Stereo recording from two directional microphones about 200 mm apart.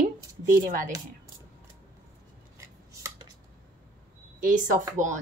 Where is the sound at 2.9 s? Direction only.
15° right (ahead or behind).